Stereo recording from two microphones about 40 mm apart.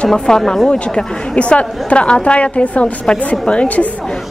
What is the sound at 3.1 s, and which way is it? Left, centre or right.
Speech, centre.